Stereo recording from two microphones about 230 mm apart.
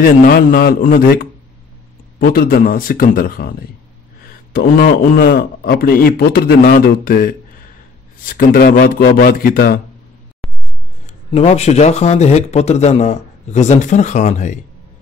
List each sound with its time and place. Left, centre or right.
0.0 s a man's voice: left
10.4 s a sound: centre
11.3 s speech: left